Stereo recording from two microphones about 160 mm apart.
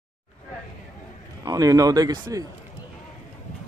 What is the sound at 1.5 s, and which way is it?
Speech, 20° right (ahead or behind).